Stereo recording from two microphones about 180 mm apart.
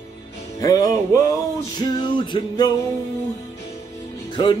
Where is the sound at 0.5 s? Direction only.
20° left (ahead or behind).